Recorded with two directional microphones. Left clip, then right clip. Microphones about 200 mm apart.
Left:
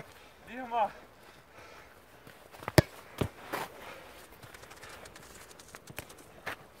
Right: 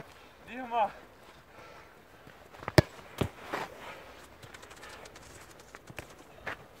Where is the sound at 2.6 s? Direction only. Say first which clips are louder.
Even; 40° left (ahead or behind).